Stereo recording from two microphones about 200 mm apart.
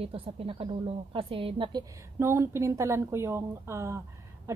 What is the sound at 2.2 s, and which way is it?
A woman's voice, 15° right (ahead or behind).